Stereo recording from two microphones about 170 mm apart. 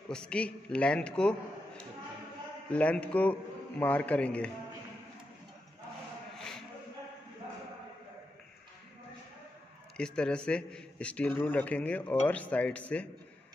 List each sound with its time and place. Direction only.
0.1 s a man's voice: 5° left (ahead or behind)
2.7 s a man's voice: 5° left (ahead or behind)
6.3 s shuffle: 5° left (ahead or behind)
9.9 s a man's voice: 5° left (ahead or behind)